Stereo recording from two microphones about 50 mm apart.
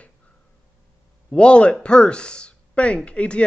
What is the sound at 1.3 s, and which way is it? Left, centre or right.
Speech, left.